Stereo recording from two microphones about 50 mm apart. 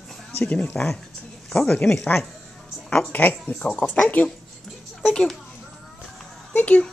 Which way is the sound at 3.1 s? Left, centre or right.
Left.